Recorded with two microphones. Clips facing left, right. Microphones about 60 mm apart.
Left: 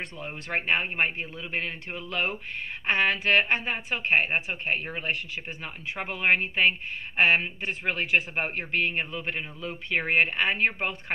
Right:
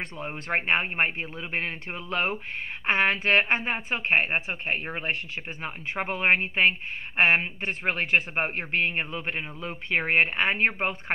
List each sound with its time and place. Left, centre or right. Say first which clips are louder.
0.0 s speech: right 2 dB; right
2.9 s speech: right 1 dB; right